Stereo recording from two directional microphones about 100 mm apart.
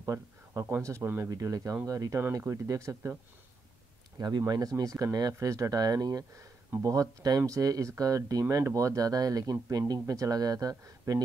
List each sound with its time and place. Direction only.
0.0 s speech: 25° right (ahead or behind)
4.2 s speech: 40° right (ahead or behind)